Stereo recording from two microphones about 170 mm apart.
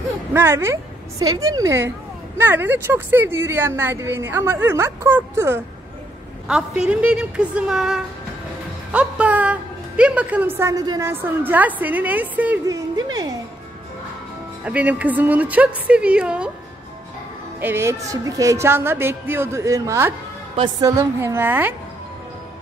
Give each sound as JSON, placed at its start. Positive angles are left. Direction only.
{"t": 0.3, "sound": "a woman's voice", "side_deg": -15}
{"t": 12.6, "sound": "speech", "side_deg": -20}
{"t": 14.6, "sound": "speech", "side_deg": -10}
{"t": 17.6, "sound": "speech", "side_deg": -15}